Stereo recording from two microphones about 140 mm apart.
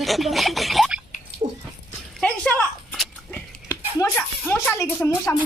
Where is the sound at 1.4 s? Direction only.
45° right (ahead or behind).